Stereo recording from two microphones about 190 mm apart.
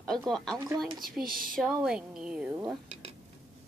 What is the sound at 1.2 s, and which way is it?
Speech, 50° right (ahead or behind).